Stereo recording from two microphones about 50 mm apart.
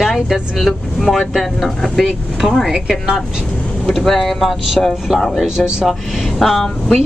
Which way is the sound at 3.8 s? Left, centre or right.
Centre.